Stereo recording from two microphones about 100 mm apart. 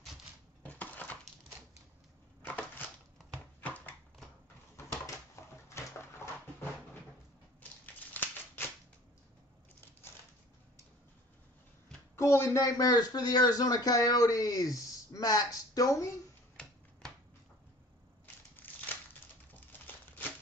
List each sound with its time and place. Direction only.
0.7 s crushing: 15° left (ahead or behind)
2.4 s crushing: 20° left (ahead or behind)
3.6 s a sound: 15° left (ahead or behind)
4.7 s a sound: 30° left (ahead or behind)
7.8 s scissors: 20° left (ahead or behind)
12.2 s speech: 30° left (ahead or behind)
18.6 s crumpling: 20° left (ahead or behind)